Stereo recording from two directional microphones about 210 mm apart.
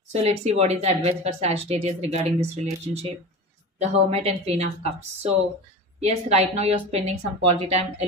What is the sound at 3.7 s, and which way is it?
Speech, 30° right (ahead or behind).